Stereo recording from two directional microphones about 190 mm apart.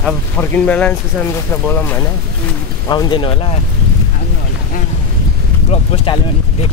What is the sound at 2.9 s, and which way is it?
Speech, 20° left (ahead or behind).